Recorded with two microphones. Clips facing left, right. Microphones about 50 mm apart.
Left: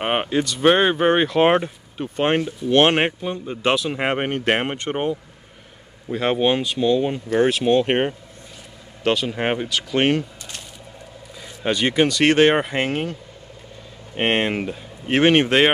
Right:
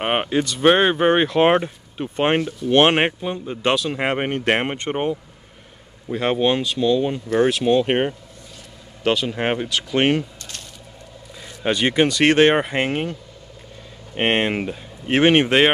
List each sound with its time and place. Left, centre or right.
0.0 s speech: centre
2.1 s speech: centre
3.9 s speech: centre
6.3 s speech: centre
7.0 s speech: centre
11.6 s speech: centre